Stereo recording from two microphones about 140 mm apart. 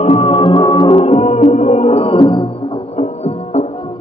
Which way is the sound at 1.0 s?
50° left (ahead or behind).